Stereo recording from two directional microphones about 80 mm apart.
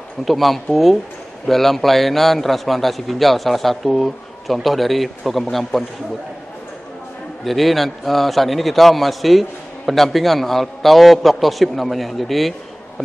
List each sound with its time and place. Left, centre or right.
0.2 s a man's voice: centre
7.4 s a man's voice: centre